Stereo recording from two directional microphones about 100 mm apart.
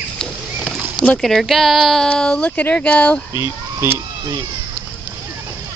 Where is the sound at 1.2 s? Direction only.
Centre (ahead or behind).